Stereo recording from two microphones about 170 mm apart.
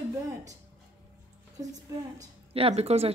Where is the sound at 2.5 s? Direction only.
35° right (ahead or behind).